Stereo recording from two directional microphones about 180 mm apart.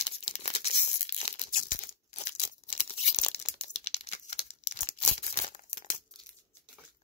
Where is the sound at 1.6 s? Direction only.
45° left (ahead or behind).